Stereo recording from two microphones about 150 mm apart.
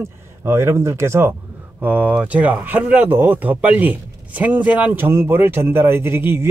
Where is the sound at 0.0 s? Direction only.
15° right (ahead or behind).